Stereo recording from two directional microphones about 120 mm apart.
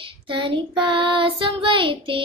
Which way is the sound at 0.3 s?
45° right (ahead or behind).